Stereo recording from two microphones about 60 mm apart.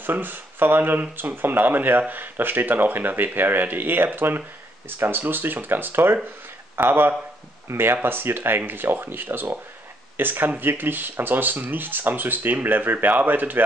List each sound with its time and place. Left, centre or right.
0.0 s speech: right